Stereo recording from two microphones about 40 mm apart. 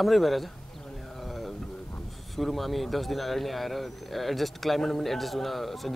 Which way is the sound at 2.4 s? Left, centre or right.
Centre.